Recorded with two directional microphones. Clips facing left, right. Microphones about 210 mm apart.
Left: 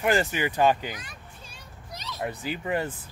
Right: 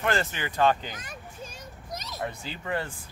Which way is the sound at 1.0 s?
45° right (ahead or behind).